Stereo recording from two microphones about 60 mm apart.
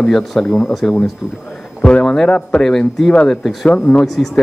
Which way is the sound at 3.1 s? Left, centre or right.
Centre.